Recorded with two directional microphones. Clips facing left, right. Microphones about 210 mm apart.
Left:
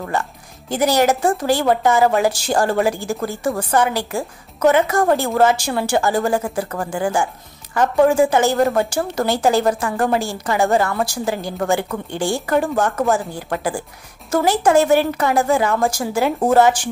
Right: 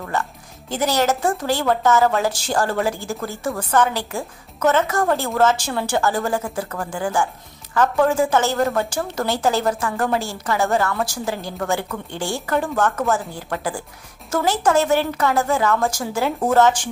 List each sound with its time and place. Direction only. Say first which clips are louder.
0.7 s a woman's voice: left 4 dB; 10° left (ahead or behind)